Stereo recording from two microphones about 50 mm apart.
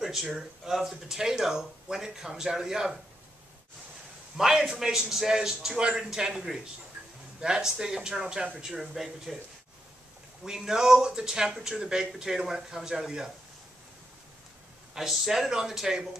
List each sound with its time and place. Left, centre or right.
0.0 s speech: centre
4.4 s speech: centre
10.4 s speech: centre
15.0 s speech: centre